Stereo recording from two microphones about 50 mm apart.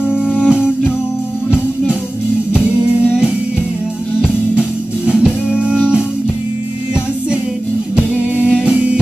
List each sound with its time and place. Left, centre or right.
0.1 s music: centre
2.5 s music: right
4.2 s music: centre
7.9 s music: right